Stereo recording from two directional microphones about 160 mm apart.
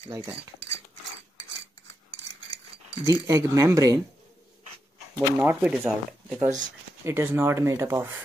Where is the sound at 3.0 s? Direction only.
20° right (ahead or behind).